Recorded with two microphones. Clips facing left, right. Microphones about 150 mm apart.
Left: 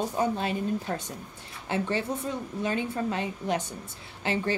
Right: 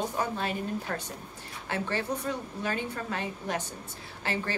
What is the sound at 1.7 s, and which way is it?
A woman's voice, 20° left (ahead or behind).